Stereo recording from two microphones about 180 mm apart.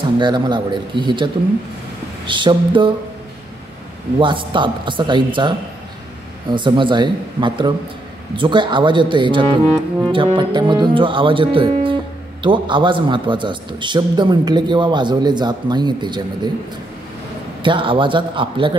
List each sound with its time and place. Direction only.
0.2 s speech: 25° right (ahead or behind)
4.2 s speech: 25° right (ahead or behind)
6.5 s speech: 25° right (ahead or behind)
17.6 s speech: 30° right (ahead or behind)